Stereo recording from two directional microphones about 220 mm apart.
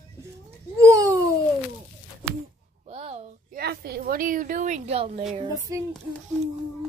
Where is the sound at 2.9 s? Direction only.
25° right (ahead or behind).